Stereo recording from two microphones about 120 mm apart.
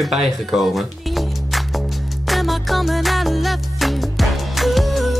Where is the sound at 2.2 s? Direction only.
Centre (ahead or behind).